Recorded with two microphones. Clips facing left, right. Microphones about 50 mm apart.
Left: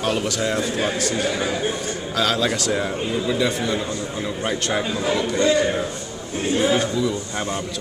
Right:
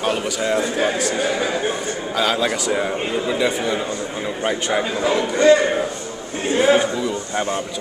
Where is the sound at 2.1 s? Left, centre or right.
Centre.